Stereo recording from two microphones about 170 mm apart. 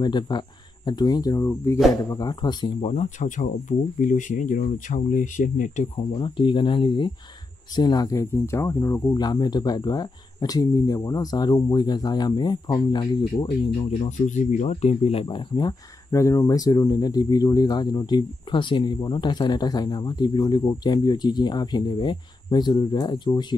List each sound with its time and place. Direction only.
0.0 s speech: 25° left (ahead or behind)
2.8 s speech: 40° left (ahead or behind)
6.1 s speech: 30° left (ahead or behind)